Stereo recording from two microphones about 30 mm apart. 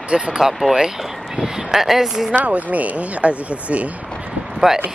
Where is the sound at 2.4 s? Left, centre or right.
Right.